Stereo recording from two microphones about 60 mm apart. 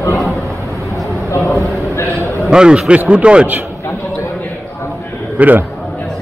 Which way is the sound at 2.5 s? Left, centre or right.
Centre.